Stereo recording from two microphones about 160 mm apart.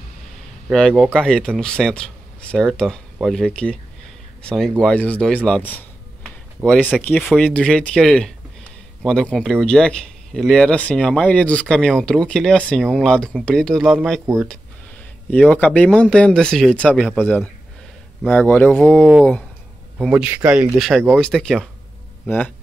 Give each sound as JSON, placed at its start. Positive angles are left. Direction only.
{"t": 0.7, "sound": "speech", "side_deg": 0}
{"t": 20.0, "sound": "speech", "side_deg": -5}